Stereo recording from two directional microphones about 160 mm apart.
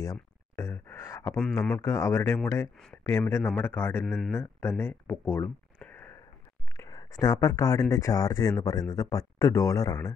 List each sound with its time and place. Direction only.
0.0 s a sound: 20° left (ahead or behind)
1.8 s speech: 15° left (ahead or behind)
4.0 s speech: centre (ahead or behind)
4.3 s speech: 15° left (ahead or behind)
6.8 s speech: 20° left (ahead or behind)